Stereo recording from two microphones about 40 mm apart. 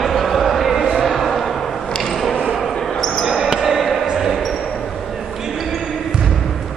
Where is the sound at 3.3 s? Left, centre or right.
Centre.